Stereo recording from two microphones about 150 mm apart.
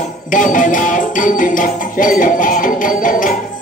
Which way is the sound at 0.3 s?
60° left (ahead or behind).